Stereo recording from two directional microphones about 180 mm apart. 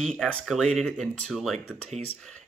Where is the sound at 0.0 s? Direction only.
5° left (ahead or behind).